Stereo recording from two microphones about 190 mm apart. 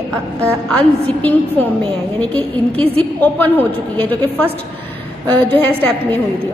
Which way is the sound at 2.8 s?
30° right (ahead or behind).